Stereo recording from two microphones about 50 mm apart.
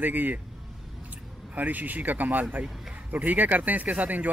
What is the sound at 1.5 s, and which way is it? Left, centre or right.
Speech, right.